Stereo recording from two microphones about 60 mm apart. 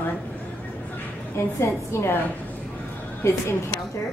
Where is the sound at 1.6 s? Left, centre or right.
Left.